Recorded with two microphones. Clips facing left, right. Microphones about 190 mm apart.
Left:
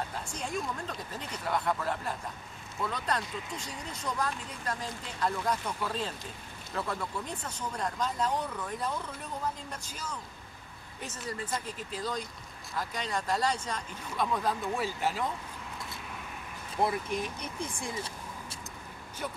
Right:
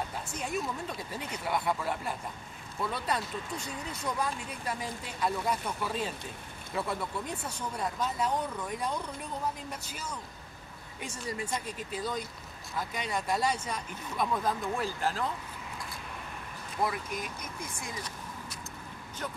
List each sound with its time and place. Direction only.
0.3 s speech: 5° right (ahead or behind); by 15.2 s 10° left (ahead or behind)
16.8 s speech: 30° left (ahead or behind)